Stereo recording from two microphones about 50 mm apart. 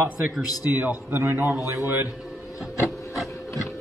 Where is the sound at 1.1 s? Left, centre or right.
Right.